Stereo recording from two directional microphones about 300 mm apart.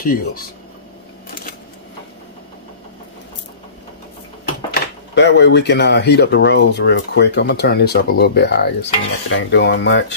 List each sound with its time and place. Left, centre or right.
0.0 s speech: left
5.1 s speech: left